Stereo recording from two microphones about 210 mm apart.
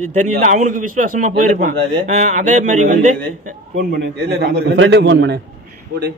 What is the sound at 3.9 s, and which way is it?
A man's voice, 50° right (ahead or behind).